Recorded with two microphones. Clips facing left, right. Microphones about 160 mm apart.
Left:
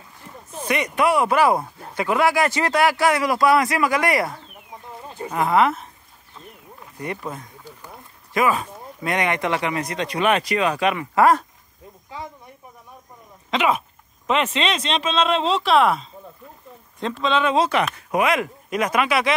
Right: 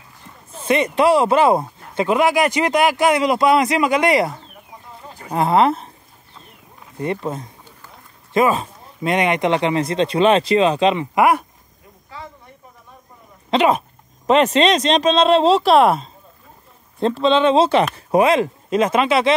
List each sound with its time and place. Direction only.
0.7 s speech: 25° right (ahead or behind)
7.0 s speech: 25° right (ahead or behind)
12.2 s snake: 15° left (ahead or behind)
13.5 s speech: 35° right (ahead or behind)